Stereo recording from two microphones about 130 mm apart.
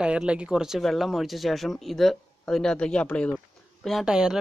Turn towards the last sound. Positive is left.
turn(degrees=-5)  # may be behind; listen again after turning